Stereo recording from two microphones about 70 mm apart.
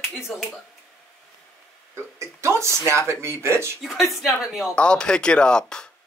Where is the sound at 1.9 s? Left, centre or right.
Right.